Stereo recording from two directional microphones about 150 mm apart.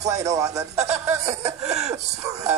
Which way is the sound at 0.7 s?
45° right (ahead or behind).